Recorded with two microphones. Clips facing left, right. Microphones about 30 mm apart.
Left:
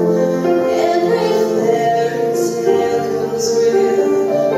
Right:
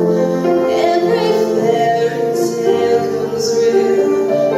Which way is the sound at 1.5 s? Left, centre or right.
Right.